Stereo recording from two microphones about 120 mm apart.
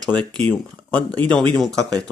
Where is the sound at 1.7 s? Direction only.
30° right (ahead or behind).